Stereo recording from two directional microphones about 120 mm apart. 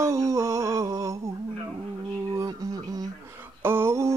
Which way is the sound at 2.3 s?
30° right (ahead or behind).